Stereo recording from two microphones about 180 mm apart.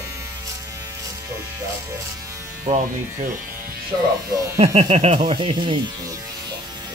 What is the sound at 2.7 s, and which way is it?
Speech, 45° right (ahead or behind).